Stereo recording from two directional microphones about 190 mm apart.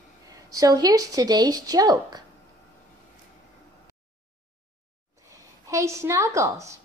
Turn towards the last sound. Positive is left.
turn(degrees=-15)  # may be behind; listen again after turning